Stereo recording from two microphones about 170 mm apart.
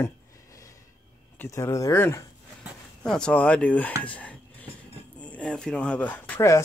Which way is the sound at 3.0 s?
5° left (ahead or behind).